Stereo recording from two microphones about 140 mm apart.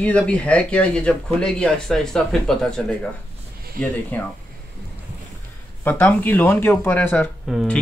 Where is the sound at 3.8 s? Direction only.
90° right.